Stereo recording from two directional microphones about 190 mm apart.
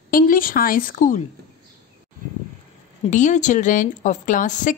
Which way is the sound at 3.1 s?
40° left (ahead or behind).